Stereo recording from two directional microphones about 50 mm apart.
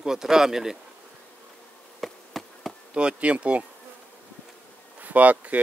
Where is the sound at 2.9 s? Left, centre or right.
Right.